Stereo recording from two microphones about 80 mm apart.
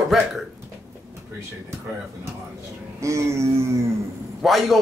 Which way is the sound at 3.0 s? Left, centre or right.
Right.